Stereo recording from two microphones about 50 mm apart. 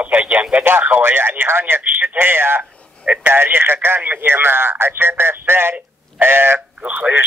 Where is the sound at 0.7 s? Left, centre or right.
Right.